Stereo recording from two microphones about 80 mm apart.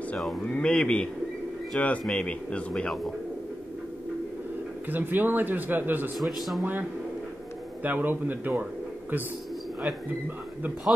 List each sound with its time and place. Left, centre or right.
0.5 s speech: centre
4.8 s speech: right
6.1 s speech: centre
6.6 s speech: right